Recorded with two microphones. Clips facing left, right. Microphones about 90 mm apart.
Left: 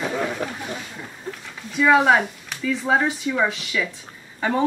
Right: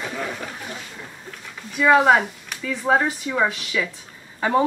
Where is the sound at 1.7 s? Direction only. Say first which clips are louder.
Right 1 dB; centre (ahead or behind).